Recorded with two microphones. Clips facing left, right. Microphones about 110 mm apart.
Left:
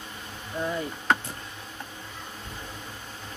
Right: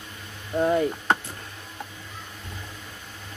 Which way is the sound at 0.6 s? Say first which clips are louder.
Right 8 dB; 50° right (ahead or behind).